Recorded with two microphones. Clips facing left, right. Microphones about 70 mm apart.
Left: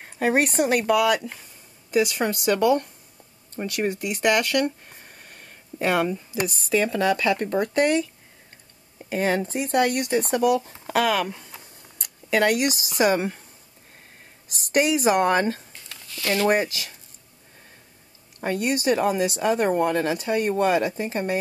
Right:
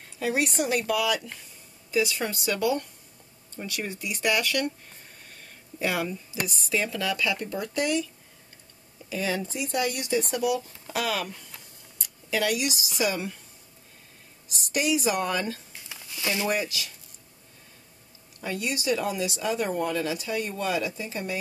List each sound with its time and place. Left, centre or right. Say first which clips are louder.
0.0 s speech: left 6 dB; left
3.9 s speech: left 4 dB; left
4.6 s a sound: left 4 dB; left
6.4 s speech: left 6 dB; left
14.5 s speech: left 5 dB; left
15.7 s a sound: left 1 dB; centre
16.4 s speech: left 6 dB; left
18.4 s speech: left 7 dB; left